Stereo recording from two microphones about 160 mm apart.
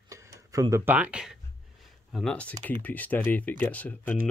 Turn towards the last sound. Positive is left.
turn(degrees=10)  # may be behind; listen again after turning